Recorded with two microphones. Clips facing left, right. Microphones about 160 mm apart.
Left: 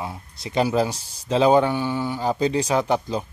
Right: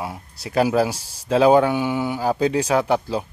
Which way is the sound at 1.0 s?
35° right (ahead or behind).